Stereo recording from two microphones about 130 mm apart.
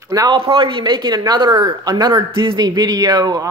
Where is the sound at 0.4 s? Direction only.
45° right (ahead or behind).